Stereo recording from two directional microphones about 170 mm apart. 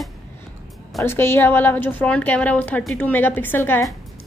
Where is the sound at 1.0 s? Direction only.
15° left (ahead or behind).